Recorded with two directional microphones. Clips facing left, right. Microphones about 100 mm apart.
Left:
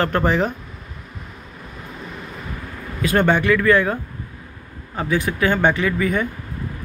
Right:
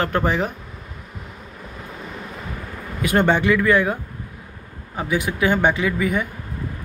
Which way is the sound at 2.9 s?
20° right (ahead or behind).